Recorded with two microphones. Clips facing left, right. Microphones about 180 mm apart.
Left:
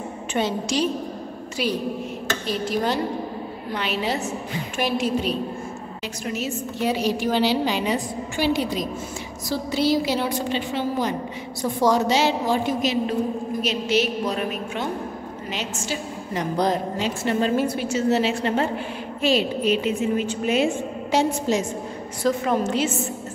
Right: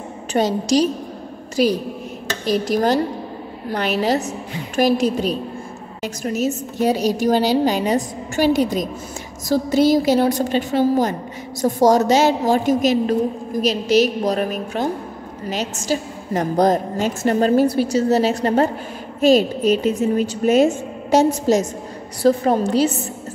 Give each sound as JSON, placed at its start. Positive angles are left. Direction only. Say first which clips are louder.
{"t": 0.3, "sound": "a woman's voice", "louder": "right 7 dB", "side_deg": -40}